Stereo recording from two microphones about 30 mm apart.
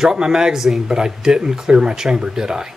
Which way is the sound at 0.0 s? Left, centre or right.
Right.